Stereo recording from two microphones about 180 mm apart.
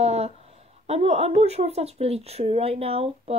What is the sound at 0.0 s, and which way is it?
A woman's voice, 35° right (ahead or behind).